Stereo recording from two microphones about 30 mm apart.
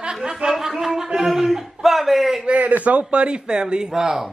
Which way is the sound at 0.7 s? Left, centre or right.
Centre.